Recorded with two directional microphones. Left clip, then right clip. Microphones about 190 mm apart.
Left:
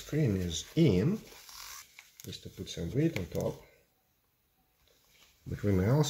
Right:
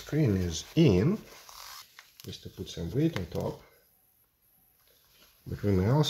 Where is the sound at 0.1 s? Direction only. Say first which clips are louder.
Right 3 dB; 40° right (ahead or behind).